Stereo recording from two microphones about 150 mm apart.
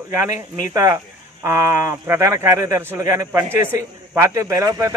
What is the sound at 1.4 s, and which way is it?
A man's voice, 15° right (ahead or behind).